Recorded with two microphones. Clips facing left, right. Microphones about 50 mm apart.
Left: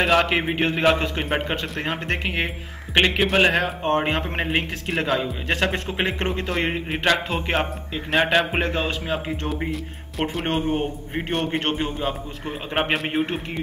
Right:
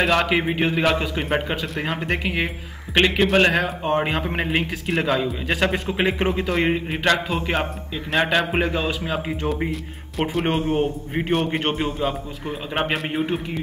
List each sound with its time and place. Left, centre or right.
0.0 s a man's voice: centre
6.1 s speech: centre
6.4 s a man's voice: centre
10.6 s a man's voice: centre
11.1 s a man's voice: centre
12.0 s a man's voice: centre
12.9 s a man's voice: centre